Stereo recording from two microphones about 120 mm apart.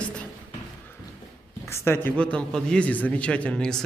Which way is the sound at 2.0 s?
10° left (ahead or behind).